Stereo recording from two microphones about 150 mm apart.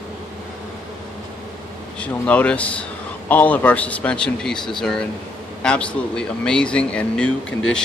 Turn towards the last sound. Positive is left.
turn(degrees=5)  # may be behind; listen again after turning